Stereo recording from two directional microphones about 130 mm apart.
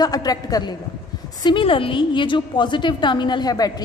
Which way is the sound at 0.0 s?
30° left (ahead or behind).